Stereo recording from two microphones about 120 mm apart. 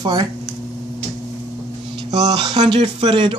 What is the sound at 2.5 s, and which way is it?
Speech, 50° right (ahead or behind).